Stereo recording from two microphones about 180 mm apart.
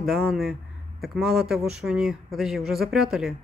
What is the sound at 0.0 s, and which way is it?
Speech, centre (ahead or behind).